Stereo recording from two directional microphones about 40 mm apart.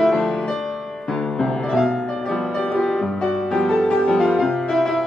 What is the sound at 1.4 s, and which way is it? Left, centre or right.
Music, centre.